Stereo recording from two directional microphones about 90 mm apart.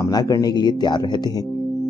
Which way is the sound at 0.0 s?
45° left (ahead or behind).